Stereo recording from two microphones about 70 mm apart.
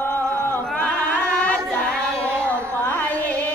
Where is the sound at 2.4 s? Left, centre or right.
Left.